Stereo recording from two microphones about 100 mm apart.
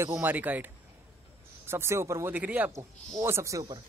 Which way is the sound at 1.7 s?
25° right (ahead or behind).